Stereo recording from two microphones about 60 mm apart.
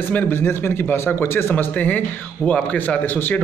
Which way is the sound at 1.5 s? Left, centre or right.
Left.